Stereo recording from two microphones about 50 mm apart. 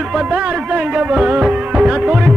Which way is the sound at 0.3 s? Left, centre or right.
Centre.